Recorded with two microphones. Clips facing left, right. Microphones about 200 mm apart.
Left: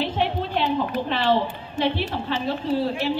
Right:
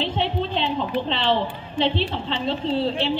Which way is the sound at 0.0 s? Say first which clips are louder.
Even; 25° right (ahead or behind).